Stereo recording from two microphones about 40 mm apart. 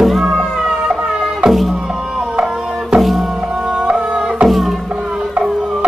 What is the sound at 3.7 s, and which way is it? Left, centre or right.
Music, centre.